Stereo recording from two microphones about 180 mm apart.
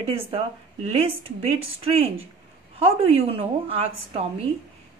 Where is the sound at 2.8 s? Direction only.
30° right (ahead or behind).